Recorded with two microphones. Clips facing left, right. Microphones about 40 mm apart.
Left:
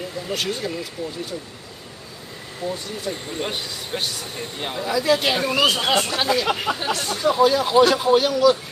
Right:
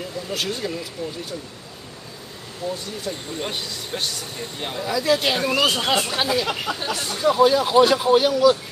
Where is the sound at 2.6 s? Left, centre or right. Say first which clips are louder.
Even; left.